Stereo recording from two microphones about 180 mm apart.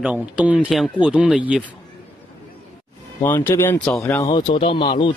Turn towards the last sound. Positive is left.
turn(degrees=25)  # may be behind; listen again after turning